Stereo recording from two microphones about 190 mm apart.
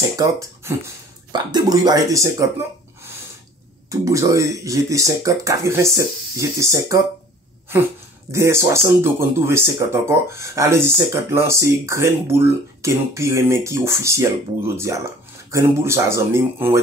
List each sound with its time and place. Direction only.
0.1 s speech: 15° right (ahead or behind)
3.9 s speech: 15° right (ahead or behind)
8.3 s speech: 15° right (ahead or behind)